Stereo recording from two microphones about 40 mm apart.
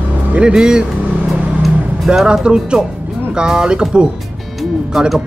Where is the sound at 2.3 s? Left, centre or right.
Right.